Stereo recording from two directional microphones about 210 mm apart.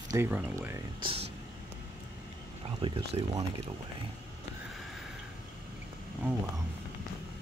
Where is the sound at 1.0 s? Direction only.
25° right (ahead or behind).